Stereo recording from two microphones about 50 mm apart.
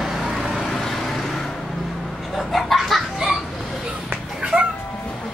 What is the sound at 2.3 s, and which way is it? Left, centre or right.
Laughter, centre.